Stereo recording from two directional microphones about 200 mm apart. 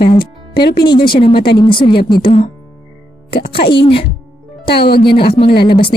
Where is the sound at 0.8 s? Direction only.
20° left (ahead or behind).